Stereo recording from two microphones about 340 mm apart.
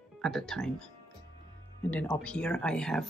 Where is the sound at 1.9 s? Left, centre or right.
Centre.